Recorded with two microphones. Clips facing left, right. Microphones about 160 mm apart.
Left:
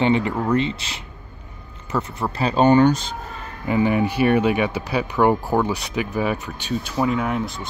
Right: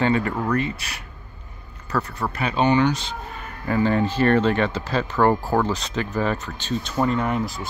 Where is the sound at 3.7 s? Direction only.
15° left (ahead or behind).